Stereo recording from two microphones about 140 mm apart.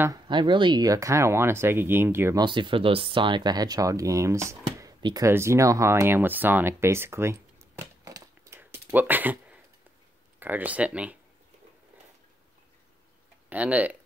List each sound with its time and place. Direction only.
0.3 s speech: 35° right (ahead or behind); by 2.4 s 20° right (ahead or behind)
2.4 s speech: 35° right (ahead or behind)
8.5 s a sound: 15° right (ahead or behind)
10.4 s speech: 10° right (ahead or behind)
13.5 s speech: 10° right (ahead or behind)